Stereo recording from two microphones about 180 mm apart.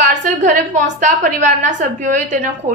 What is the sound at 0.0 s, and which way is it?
A woman's voice, 45° right (ahead or behind).